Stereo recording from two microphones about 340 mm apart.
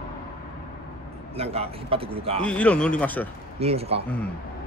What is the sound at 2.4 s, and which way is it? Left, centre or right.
Speech, centre.